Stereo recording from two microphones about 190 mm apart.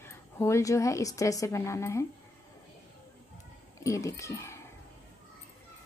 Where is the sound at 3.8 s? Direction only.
15° left (ahead or behind).